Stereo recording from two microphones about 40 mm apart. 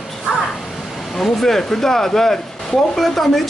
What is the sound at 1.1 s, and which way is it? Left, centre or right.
Speech, centre.